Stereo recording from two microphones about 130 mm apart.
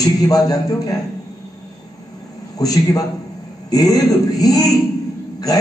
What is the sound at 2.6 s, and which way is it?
A man's voice, 30° left (ahead or behind).